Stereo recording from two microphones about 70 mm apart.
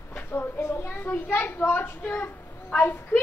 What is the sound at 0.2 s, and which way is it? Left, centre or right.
A woman's voice, left.